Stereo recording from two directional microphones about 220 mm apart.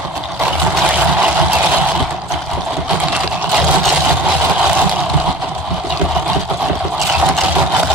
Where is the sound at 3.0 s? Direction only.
5° right (ahead or behind).